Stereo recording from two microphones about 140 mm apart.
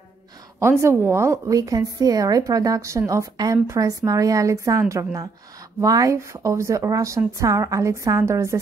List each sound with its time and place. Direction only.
0.6 s a woman's voice: 20° right (ahead or behind)